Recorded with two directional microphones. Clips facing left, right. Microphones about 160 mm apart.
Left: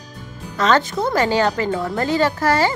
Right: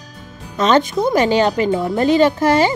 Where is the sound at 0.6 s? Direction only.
20° right (ahead or behind).